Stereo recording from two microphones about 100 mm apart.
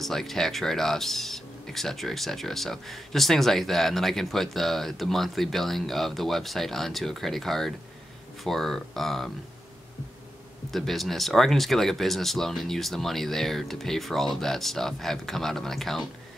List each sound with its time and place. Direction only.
0.0 s speech: 5° left (ahead or behind)
10.7 s speech: centre (ahead or behind)